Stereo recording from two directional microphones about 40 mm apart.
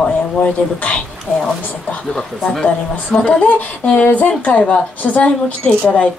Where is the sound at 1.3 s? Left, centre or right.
Left.